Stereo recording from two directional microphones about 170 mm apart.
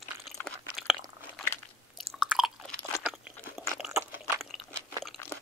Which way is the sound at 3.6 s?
Centre (ahead or behind).